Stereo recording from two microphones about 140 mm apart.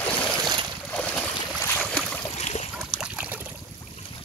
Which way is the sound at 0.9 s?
10° left (ahead or behind).